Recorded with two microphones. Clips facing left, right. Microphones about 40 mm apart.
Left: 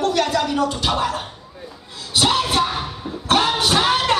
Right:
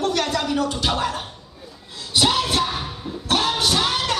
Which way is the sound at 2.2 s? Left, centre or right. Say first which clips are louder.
Left 2 dB; centre.